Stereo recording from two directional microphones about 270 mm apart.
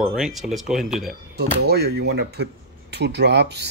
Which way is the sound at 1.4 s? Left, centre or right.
Right.